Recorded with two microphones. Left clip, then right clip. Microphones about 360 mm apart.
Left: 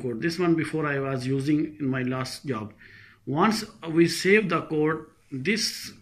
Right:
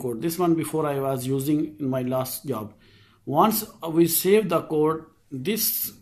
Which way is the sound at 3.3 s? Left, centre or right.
Centre.